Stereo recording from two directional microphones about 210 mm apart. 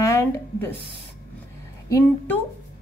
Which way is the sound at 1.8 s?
10° left (ahead or behind).